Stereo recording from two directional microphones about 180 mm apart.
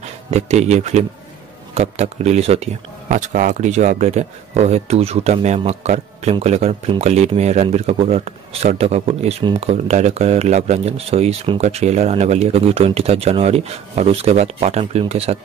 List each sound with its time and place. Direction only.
0.0 s a man's voice: 40° right (ahead or behind)